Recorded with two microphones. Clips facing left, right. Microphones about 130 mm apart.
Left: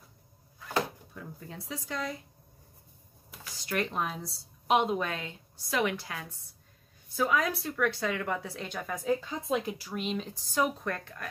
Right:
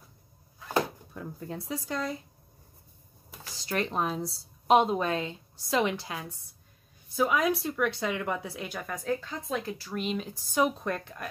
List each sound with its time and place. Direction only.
1.1 s a woman's voice: 40° right (ahead or behind)
3.5 s a woman's voice: 30° right (ahead or behind); by 9.9 s 15° left (ahead or behind)
9.9 s speech: centre (ahead or behind)
10.5 s speech: 20° right (ahead or behind)